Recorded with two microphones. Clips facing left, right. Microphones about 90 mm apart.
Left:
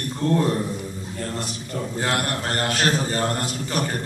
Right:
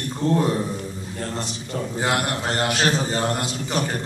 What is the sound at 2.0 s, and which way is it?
A man's voice, 15° right (ahead or behind).